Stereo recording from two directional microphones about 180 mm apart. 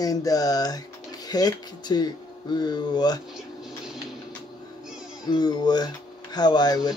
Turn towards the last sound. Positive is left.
turn(degrees=20)  # may be behind; listen again after turning